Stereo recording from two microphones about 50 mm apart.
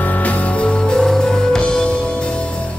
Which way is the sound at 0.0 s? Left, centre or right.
Left.